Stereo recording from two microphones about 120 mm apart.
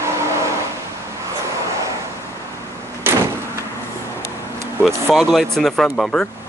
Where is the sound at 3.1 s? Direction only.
20° right (ahead or behind).